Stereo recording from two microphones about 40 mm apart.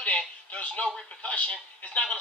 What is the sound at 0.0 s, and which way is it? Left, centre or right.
Speech, left.